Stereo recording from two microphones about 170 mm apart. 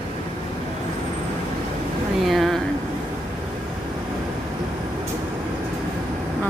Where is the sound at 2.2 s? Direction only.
Centre (ahead or behind).